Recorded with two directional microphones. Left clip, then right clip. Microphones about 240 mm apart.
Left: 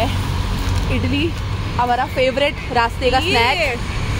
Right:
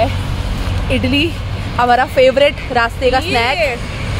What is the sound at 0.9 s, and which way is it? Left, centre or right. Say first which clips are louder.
Speech: right 7 dB; right.